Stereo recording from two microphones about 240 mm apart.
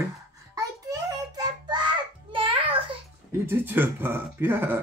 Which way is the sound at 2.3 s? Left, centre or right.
Right.